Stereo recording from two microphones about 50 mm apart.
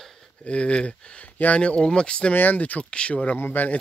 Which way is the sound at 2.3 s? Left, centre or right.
Left.